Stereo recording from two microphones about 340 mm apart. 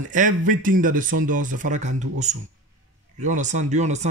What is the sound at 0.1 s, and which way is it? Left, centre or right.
Speech, right.